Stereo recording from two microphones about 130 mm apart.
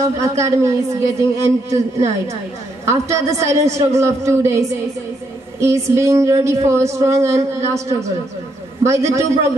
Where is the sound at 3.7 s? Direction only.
25° right (ahead or behind).